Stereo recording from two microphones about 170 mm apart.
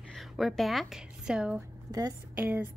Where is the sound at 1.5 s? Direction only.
20° right (ahead or behind).